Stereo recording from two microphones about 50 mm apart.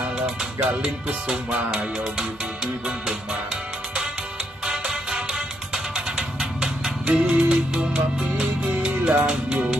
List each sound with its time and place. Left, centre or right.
0.6 s music: right
4.6 s music: centre